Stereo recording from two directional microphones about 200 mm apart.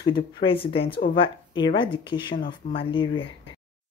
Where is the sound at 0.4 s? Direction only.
25° left (ahead or behind).